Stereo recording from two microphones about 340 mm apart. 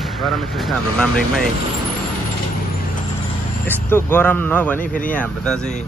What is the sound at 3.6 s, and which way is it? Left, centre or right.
Speech, centre.